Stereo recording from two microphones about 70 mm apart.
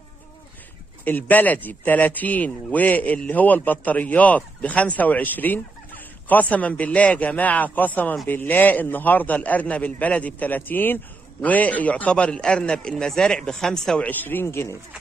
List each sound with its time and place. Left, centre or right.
1.0 s a man's voice: left; by 14.0 s centre
14.0 s speech: left